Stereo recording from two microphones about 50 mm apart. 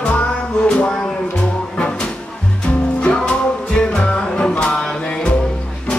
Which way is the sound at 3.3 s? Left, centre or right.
Left.